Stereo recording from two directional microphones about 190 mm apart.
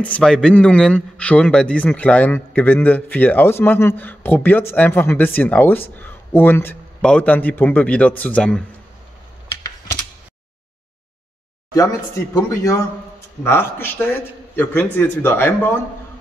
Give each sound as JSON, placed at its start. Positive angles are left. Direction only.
{"t": 0.0, "sound": "a man's voice", "side_deg": 5}
{"t": 12.4, "sound": "a man's voice", "side_deg": 15}